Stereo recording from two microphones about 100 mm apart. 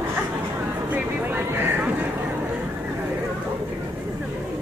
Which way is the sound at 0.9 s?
20° right (ahead or behind).